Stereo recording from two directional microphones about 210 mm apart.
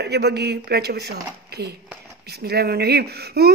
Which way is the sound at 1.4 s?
50° right (ahead or behind).